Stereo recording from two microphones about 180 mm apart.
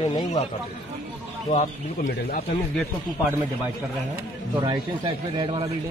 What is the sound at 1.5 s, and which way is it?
Speech, 45° left (ahead or behind).